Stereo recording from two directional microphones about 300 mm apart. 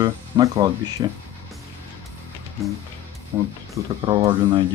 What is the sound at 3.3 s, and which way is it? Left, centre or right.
Speech, centre.